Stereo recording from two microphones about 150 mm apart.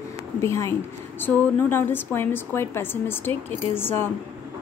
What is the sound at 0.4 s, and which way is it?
A woman's voice, 20° left (ahead or behind).